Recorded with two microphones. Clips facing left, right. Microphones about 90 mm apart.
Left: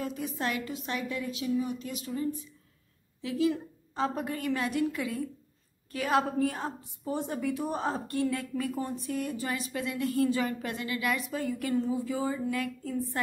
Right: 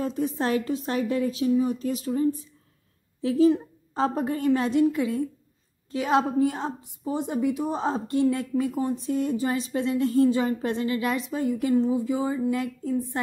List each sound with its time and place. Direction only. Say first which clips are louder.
0.0 s a woman's voice: right 7 dB; 30° right (ahead or behind)